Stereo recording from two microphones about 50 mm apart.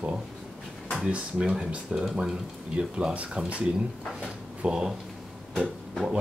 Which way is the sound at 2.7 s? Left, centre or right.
Right.